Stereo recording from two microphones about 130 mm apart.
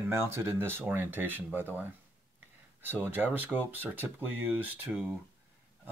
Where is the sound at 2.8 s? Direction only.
15° right (ahead or behind).